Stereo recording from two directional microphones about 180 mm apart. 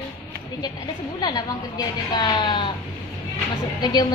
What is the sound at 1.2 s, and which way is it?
A woman's voice, 25° left (ahead or behind).